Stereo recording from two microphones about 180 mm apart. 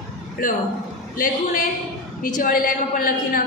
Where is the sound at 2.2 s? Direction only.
50° left (ahead or behind).